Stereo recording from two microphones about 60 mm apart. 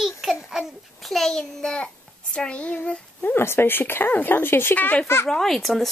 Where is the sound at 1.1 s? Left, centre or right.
Centre.